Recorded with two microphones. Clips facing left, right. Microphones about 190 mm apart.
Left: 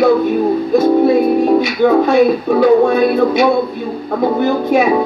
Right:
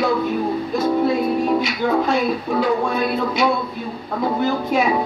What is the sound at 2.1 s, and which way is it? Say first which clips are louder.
Speech: left 9 dB; 65° left (ahead or behind).